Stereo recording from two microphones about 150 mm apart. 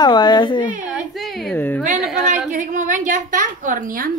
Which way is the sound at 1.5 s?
15° left (ahead or behind).